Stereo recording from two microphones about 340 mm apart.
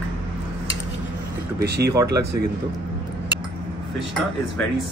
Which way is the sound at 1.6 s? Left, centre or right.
Right.